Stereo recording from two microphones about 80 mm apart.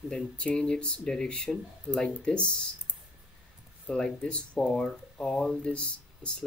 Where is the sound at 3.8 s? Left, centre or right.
Centre.